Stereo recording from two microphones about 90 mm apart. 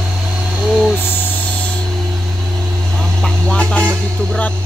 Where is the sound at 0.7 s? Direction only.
5° right (ahead or behind).